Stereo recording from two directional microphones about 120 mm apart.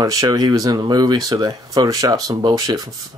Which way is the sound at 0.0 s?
30° right (ahead or behind).